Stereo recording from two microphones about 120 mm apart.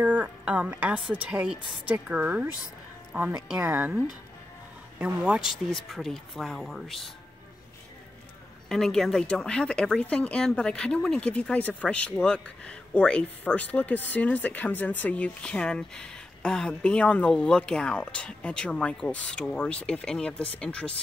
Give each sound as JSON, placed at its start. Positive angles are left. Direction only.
{"t": 0.0, "sound": "a woman's voice", "side_deg": -10}
{"t": 3.6, "sound": "a woman's voice", "side_deg": -15}
{"t": 8.6, "sound": "speech", "side_deg": 5}